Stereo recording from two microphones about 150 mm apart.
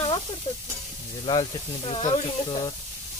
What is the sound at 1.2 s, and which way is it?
Speech, 30° left (ahead or behind).